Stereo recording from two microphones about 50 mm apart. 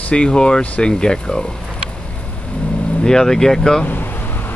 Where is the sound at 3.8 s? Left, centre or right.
Left.